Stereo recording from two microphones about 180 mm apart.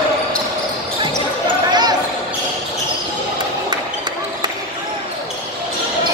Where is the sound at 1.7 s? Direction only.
25° right (ahead or behind).